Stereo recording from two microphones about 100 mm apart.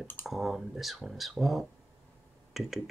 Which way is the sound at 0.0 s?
20° left (ahead or behind).